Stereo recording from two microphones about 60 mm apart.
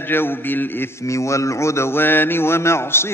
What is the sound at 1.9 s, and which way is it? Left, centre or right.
Mantra, left.